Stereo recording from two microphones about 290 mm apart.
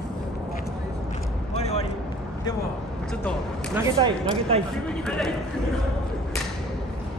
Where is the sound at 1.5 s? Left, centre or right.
Left.